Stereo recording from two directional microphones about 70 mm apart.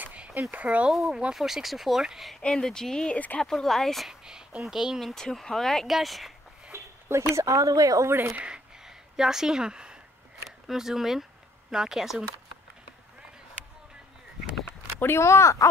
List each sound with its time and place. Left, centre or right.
0.0 s a sound: right
0.4 s speech: right
0.9 s speech: centre
2.4 s speech: centre
4.1 s speech: centre
5.1 s speech: centre
6.7 s a sound: right
7.3 s speech: right
8.4 s a sound: centre
10.7 s speech: centre
15.0 s speech: left